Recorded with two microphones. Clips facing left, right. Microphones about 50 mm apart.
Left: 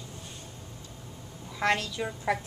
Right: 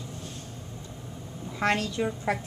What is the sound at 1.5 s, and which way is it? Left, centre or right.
Speech, centre.